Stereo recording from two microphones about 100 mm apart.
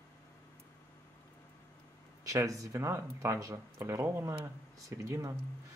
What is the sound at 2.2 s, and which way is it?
Speech, 35° right (ahead or behind).